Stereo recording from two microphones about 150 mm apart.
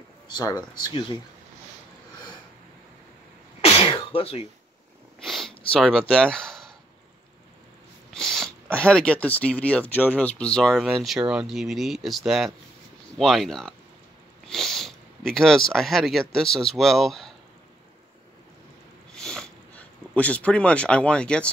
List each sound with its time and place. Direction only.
0.3 s speech: 25° left (ahead or behind)
3.6 s sneeze: 40° left (ahead or behind)
5.2 s sniff: centre (ahead or behind)
5.7 s speech: 5° left (ahead or behind)
8.1 s speech: 5° left (ahead or behind)
19.1 s sniff: 5° left (ahead or behind)